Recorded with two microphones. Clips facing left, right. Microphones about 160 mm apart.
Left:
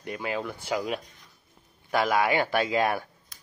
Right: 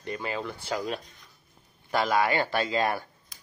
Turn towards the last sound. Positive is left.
turn(degrees=10)  # may be behind; listen again after turning